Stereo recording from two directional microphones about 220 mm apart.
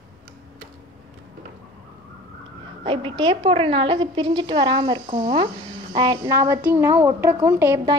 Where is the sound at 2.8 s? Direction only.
20° right (ahead or behind).